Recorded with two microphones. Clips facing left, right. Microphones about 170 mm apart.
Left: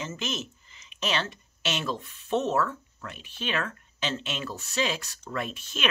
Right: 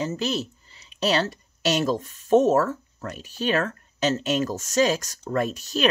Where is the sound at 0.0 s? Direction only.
35° right (ahead or behind).